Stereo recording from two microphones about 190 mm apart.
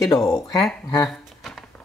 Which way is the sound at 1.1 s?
Centre (ahead or behind).